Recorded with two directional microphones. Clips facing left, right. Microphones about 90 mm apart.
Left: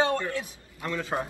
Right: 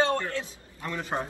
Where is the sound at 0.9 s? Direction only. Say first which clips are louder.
Left 1 dB; 15° right (ahead or behind).